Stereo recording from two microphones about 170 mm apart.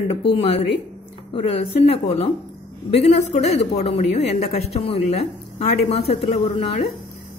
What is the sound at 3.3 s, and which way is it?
A woman's voice, 40° left (ahead or behind).